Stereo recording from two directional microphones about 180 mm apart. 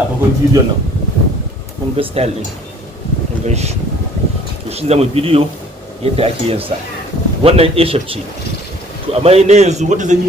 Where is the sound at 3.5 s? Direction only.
35° right (ahead or behind).